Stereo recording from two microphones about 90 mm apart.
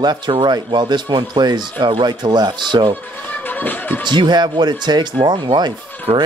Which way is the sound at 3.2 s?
20° left (ahead or behind).